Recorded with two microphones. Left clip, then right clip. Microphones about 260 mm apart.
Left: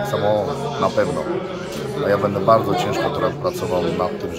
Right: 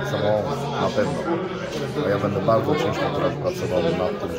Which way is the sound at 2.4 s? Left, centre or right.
Centre.